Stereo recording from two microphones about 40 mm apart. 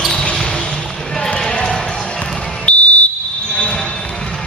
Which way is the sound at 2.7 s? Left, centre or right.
Left.